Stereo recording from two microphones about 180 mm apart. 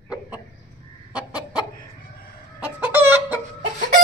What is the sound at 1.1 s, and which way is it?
Chicken, 5° right (ahead or behind).